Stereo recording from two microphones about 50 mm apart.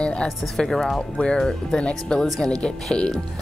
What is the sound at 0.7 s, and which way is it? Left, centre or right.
Speech, centre.